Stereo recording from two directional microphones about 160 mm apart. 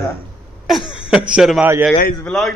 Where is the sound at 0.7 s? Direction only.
5° right (ahead or behind).